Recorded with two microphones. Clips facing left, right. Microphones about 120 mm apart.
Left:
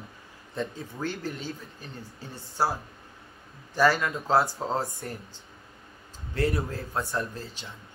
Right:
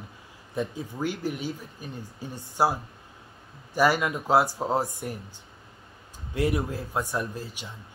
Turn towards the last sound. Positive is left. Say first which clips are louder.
# right 1 dB
turn(degrees=-10)  # may be behind; listen again after turning